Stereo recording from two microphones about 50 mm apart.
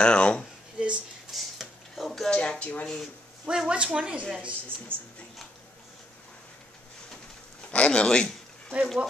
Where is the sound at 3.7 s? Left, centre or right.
Right.